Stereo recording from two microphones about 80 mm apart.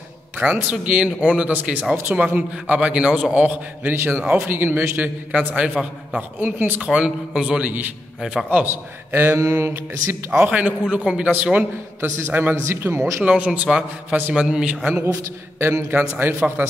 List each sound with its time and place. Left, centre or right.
0.4 s a man's voice: centre
8.5 s speech: right
10.3 s a man's voice: centre
12.0 s speech: right
13.0 s a man's voice: centre
15.6 s speech: right